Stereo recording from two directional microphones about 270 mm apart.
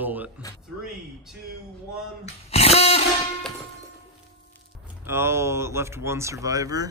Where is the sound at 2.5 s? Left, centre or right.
Left.